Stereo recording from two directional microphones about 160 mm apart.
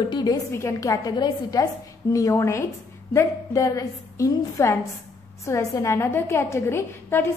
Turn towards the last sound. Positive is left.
turn(degrees=15)  # may be behind; listen again after turning